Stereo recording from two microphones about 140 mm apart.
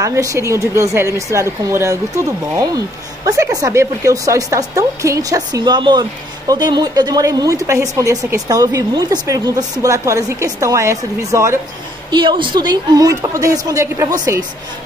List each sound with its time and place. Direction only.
0.0 s speech: 20° right (ahead or behind)
12.1 s speech: 35° right (ahead or behind)